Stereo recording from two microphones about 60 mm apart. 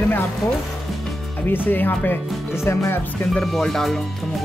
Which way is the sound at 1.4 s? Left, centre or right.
Left.